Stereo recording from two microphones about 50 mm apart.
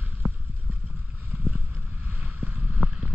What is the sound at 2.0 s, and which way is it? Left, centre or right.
Boat, right.